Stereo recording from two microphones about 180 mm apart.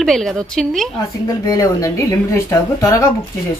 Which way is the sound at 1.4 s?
20° left (ahead or behind).